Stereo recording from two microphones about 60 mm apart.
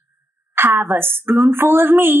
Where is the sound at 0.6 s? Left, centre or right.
Right.